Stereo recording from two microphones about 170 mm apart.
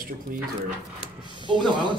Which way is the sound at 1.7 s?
25° right (ahead or behind).